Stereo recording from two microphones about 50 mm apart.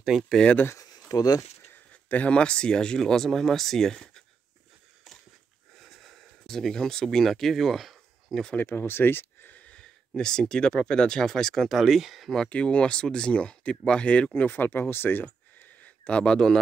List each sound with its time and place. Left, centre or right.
1.9 s a sound: left
2.3 s speech: centre
5.8 s a sound: centre
7.2 s speech: centre
8.5 s speech: left
9.6 s speech: left
11.7 s speech: centre
12.4 s speech: left
15.2 s a sound: left
16.2 s speech: centre